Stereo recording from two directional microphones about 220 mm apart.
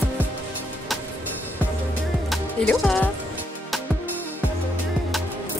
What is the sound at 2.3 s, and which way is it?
Music, 5° left (ahead or behind).